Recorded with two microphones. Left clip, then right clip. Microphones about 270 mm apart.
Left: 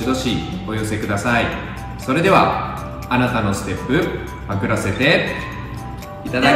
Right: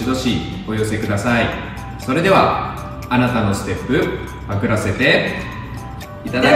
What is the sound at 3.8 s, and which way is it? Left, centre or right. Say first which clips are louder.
Speech: right 1 dB; centre.